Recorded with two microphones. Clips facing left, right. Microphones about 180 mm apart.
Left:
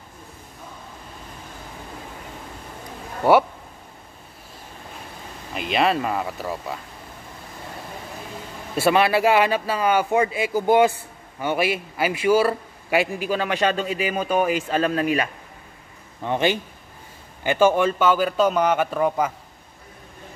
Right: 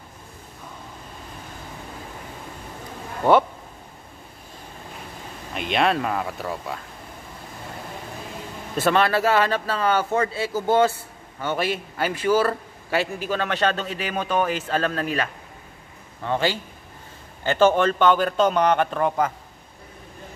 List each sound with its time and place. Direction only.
5.5 s speech: centre (ahead or behind)
8.7 s speech: 10° left (ahead or behind)